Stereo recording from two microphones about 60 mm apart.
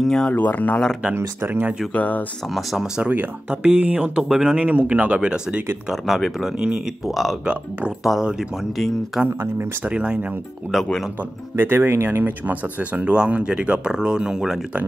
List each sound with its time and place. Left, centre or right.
0.0 s speech: centre
0.3 s speech: left
1.4 s speech: right
2.0 s speech: left
2.5 s speech: centre
3.0 s speech: right
4.2 s speech: centre
4.6 s speech: right
5.9 s speech: centre
9.3 s speech: right
9.8 s speech: centre
11.5 s speech: right; by 14.6 s centre